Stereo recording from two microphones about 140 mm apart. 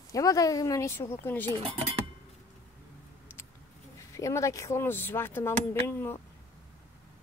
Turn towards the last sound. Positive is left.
turn(degrees=15)  # may be behind; listen again after turning